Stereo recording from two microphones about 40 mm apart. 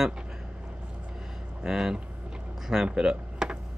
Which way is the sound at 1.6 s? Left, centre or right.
Centre.